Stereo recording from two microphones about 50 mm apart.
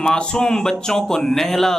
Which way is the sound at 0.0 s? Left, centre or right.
Centre.